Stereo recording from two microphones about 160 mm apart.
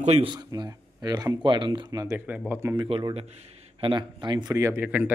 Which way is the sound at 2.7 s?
30° right (ahead or behind).